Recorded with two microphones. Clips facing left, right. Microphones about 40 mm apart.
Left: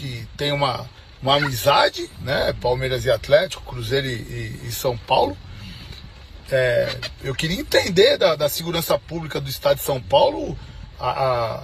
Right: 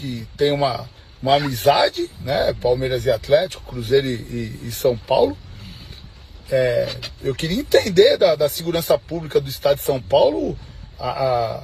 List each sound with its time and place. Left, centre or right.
0.0 s a man's voice: left
6.5 s speech: left